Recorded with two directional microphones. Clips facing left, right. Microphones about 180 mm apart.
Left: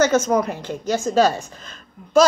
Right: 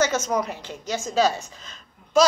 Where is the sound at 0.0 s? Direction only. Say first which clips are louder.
Left 6 dB; 55° left (ahead or behind).